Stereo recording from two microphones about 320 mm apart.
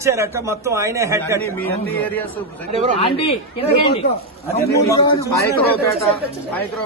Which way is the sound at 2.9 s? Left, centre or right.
Centre.